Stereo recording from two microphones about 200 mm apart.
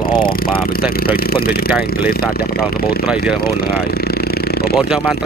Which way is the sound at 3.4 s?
50° left (ahead or behind).